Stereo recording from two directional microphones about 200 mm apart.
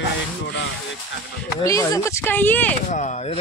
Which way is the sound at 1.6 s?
15° left (ahead or behind).